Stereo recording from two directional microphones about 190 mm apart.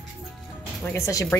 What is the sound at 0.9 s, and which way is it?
Speech, 15° left (ahead or behind).